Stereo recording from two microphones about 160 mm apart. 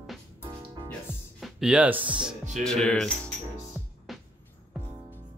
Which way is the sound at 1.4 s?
5° right (ahead or behind).